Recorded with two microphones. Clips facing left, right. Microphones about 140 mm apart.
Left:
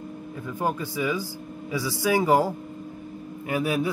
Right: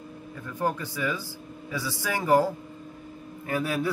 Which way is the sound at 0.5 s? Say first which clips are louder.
Left 1 dB; 10° left (ahead or behind).